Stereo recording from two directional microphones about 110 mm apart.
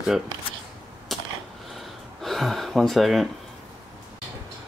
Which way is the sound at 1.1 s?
Centre (ahead or behind).